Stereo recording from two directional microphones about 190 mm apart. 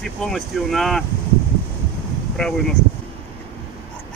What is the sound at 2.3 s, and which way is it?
Speech, 5° left (ahead or behind).